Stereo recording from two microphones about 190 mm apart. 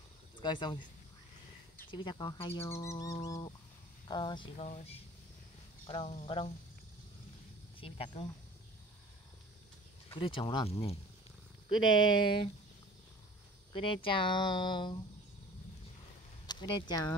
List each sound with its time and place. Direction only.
0.4 s speech: 25° left (ahead or behind)
1.9 s speech: 25° left (ahead or behind)
2.6 s bird: 15° left (ahead or behind)
4.1 s speech: 25° left (ahead or behind)
4.6 s speech: 35° left (ahead or behind)
7.8 s speech: 30° left (ahead or behind)
10.0 s speech: 25° left (ahead or behind)
11.7 s speech: 90° left
12.2 s speech: 25° left (ahead or behind)
13.7 s speech: 25° left (ahead or behind)
16.4 s speech: 25° left (ahead or behind)